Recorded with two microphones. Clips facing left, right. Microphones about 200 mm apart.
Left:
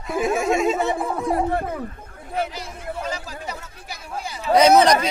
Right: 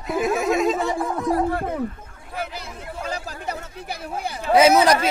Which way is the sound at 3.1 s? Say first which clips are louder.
Right 2 dB; 60° right (ahead or behind).